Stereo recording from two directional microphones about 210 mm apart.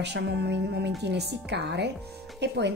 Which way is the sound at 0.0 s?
55° right (ahead or behind).